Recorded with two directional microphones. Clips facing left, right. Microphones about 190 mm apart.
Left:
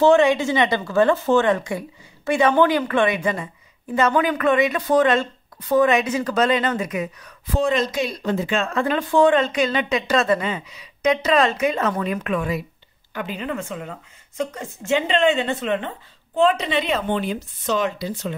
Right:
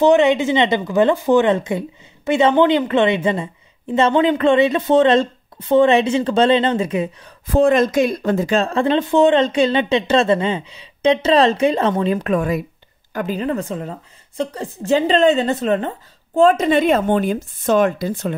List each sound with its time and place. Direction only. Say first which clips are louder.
0.0 s speech: right 2 dB; 20° right (ahead or behind)
7.4 s a woman's voice: right 7 dB; 50° right (ahead or behind)